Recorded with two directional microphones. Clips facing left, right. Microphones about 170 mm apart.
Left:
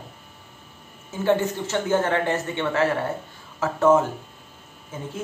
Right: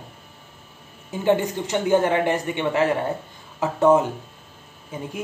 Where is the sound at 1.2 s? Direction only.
15° right (ahead or behind).